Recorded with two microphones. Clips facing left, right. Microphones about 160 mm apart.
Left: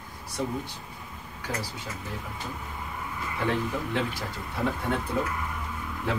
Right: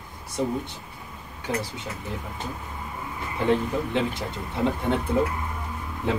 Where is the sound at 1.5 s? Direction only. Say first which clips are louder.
Right 5 dB; 20° right (ahead or behind).